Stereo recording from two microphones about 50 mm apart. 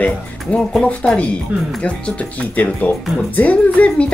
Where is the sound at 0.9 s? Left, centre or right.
Left.